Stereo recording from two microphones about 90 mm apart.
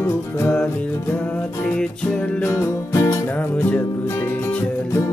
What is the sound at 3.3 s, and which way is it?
Music, 15° left (ahead or behind).